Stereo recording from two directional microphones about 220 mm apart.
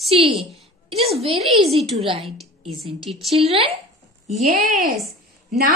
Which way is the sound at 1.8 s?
25° right (ahead or behind).